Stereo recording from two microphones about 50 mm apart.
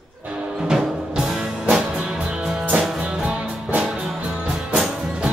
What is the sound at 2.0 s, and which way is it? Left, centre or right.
Music, right.